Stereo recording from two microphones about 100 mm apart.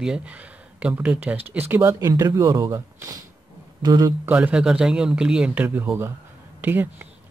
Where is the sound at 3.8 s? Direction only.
45° right (ahead or behind).